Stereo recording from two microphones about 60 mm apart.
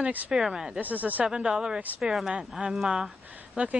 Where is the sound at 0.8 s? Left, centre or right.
Right.